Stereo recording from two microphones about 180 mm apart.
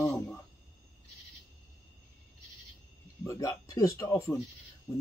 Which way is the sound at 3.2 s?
15° left (ahead or behind).